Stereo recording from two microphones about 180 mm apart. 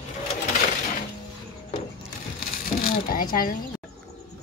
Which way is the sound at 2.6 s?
55° left (ahead or behind).